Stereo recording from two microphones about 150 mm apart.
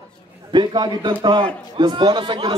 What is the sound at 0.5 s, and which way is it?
A man's voice, 30° right (ahead or behind).